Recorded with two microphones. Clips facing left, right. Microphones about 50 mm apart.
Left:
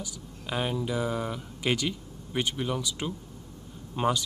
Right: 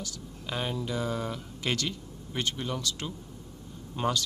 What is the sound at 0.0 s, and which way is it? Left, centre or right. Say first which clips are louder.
Speech: even; centre.